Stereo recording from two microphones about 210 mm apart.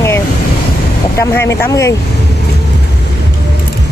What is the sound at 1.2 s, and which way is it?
Speech, 10° left (ahead or behind).